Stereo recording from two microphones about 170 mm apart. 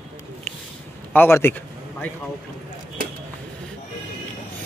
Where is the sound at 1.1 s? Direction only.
15° left (ahead or behind).